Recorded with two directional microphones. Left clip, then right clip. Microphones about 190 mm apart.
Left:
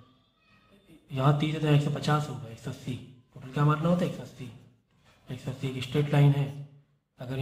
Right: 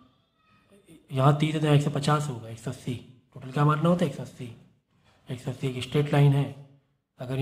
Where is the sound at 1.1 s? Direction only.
35° right (ahead or behind).